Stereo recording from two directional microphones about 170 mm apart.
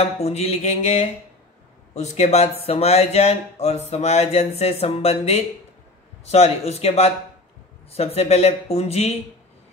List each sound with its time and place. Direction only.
0.0 s speech: 40° left (ahead or behind)